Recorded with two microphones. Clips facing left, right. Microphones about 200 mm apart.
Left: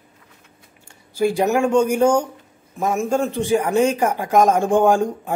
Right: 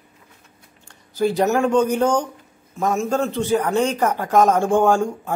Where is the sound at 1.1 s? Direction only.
10° left (ahead or behind).